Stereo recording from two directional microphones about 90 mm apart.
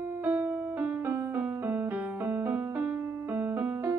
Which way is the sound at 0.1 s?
15° right (ahead or behind).